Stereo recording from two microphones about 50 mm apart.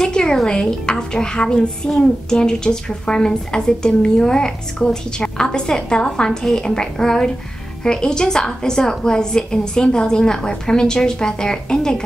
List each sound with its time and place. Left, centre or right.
0.0 s music: centre
0.5 s a child's voice: centre